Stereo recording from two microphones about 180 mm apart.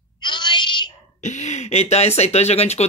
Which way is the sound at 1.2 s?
40° left (ahead or behind).